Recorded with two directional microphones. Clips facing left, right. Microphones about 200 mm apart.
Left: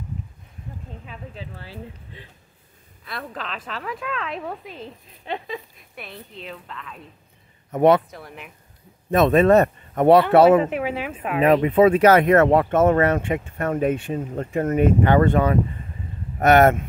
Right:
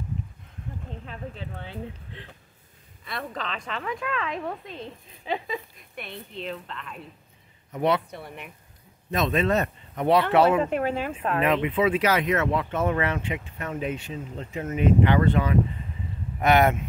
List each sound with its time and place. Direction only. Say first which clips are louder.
1.0 s a woman's voice: even; 5° left (ahead or behind)
7.7 s speech: left 8 dB; 50° left (ahead or behind)
8.1 s a woman's voice: even; centre (ahead or behind)
9.1 s speech: left 9 dB; 55° left (ahead or behind)
10.7 s speech: even; 10° left (ahead or behind)
11.4 s speech: left 9 dB; 40° left (ahead or behind)